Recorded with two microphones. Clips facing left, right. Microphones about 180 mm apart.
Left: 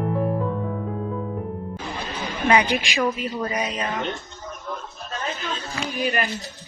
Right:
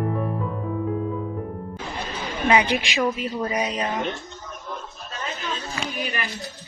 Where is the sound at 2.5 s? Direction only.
20° right (ahead or behind).